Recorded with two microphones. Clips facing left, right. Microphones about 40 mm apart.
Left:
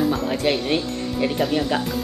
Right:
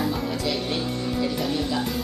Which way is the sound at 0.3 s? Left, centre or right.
Left.